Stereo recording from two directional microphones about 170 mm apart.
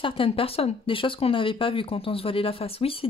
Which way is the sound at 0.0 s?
30° left (ahead or behind).